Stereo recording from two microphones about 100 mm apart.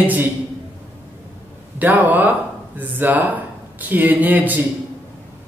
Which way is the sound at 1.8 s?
15° right (ahead or behind).